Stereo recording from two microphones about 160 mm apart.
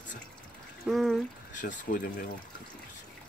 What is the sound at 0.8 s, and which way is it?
Speech, centre (ahead or behind).